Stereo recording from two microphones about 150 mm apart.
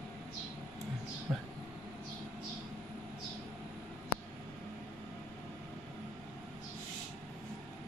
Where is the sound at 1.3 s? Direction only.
5° right (ahead or behind).